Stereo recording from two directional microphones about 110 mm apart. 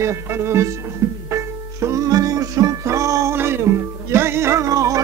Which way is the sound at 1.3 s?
25° right (ahead or behind).